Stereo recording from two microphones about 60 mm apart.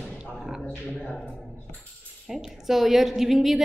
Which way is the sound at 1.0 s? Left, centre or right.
Centre.